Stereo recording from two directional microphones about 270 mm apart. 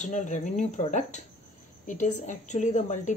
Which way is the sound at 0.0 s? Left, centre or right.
Left.